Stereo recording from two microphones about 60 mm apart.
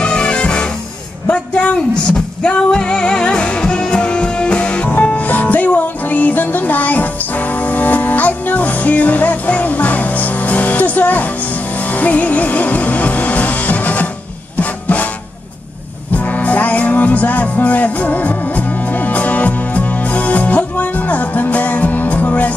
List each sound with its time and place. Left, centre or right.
0.0 s music: centre
1.3 s a sound: centre
2.4 s music: centre
16.1 s music: left